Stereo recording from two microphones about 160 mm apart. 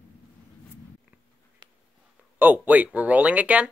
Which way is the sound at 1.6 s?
25° right (ahead or behind).